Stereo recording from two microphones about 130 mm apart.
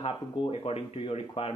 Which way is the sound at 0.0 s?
45° left (ahead or behind).